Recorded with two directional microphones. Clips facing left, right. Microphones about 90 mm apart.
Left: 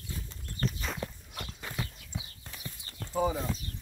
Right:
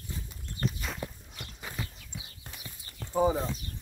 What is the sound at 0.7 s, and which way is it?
Walk, centre (ahead or behind).